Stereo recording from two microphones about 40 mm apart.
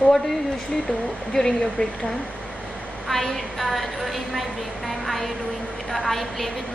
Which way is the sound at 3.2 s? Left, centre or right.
Centre.